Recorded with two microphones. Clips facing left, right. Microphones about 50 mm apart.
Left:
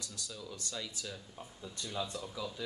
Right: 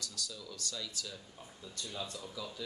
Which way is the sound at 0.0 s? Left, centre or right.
Left.